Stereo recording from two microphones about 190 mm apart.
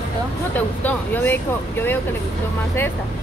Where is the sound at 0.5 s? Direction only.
10° left (ahead or behind).